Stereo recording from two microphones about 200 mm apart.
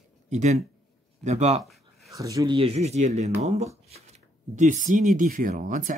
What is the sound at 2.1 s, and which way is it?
Speech, 15° right (ahead or behind).